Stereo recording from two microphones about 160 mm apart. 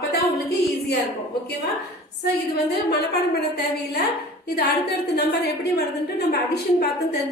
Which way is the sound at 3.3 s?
85° left.